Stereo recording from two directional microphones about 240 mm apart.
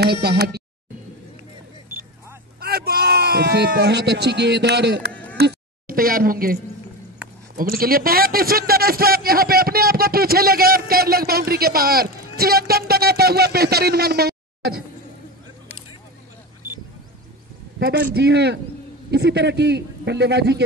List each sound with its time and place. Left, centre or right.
0.0 s speech: right
2.6 s speech: right
5.1 s a sound: centre
5.4 s a man's voice: right
17.7 s speech: right